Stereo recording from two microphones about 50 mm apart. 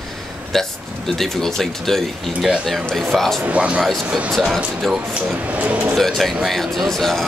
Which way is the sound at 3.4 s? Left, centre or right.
Right.